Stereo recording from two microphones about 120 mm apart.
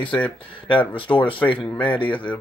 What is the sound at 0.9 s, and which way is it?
Speech, 45° left (ahead or behind).